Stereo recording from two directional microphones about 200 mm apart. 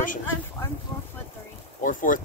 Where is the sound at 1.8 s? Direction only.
40° left (ahead or behind).